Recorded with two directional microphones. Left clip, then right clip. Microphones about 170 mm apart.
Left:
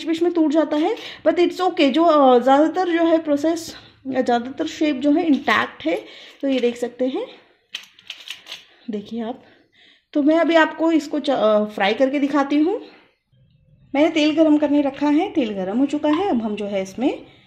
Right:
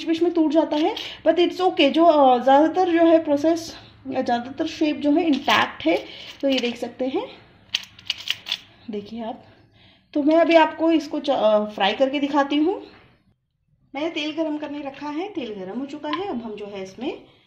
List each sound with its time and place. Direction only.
0.0 s a woman's voice: 45° left (ahead or behind)
8.9 s a woman's voice: 50° left (ahead or behind)
13.9 s a woman's voice: 55° left (ahead or behind)